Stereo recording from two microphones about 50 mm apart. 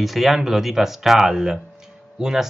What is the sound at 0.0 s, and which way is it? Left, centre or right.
Speech, centre.